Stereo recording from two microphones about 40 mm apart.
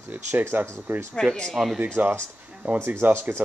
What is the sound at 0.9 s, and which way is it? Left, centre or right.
Speech, right.